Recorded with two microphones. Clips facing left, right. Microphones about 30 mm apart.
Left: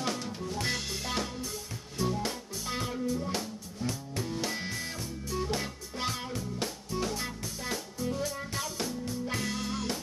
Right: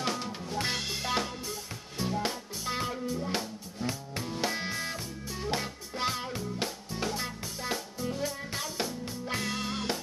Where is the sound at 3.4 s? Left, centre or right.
Right.